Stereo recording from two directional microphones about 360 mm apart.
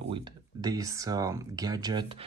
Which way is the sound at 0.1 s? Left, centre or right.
Centre.